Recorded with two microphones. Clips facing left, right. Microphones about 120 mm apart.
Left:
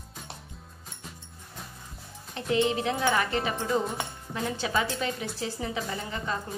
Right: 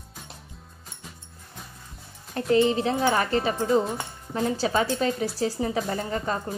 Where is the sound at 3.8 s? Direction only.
Centre (ahead or behind).